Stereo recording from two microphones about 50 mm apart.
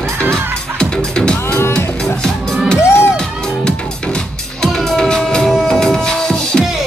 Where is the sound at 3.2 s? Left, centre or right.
Centre.